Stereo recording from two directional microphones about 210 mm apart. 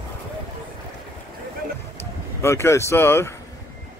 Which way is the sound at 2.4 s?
15° left (ahead or behind).